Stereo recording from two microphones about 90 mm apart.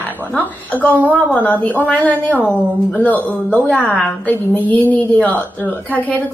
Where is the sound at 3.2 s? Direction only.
Centre (ahead or behind).